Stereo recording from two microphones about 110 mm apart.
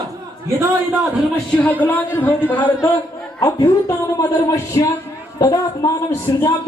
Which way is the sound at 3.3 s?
40° left (ahead or behind).